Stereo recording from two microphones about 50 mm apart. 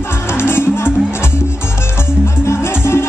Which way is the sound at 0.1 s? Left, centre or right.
Left.